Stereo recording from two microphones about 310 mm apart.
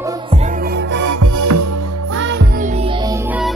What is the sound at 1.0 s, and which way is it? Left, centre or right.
Music, right.